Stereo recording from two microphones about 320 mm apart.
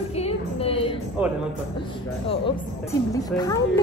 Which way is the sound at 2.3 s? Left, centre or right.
Centre.